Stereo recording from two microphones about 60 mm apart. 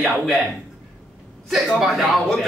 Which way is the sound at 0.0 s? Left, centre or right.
Centre.